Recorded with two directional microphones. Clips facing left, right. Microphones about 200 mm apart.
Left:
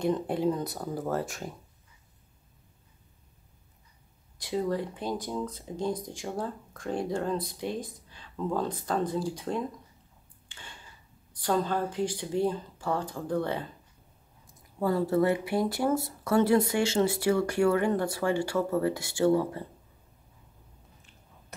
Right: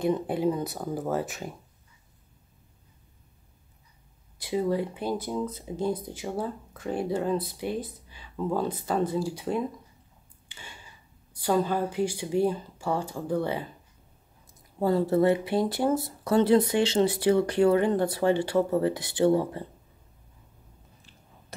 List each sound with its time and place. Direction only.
0.0 s speech: 5° right (ahead or behind)
4.4 s speech: 5° right (ahead or behind)
10.5 s a sound: 10° right (ahead or behind)
11.3 s speech: 10° right (ahead or behind)
14.8 s speech: 25° right (ahead or behind)